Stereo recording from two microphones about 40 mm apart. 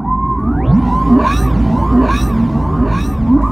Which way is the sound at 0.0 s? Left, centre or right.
Centre.